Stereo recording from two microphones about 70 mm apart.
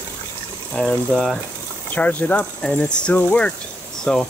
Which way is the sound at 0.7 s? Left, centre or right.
Centre.